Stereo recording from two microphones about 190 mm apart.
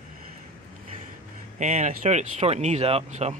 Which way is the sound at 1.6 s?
40° right (ahead or behind).